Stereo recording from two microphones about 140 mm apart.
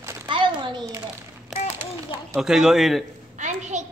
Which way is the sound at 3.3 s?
60° right (ahead or behind).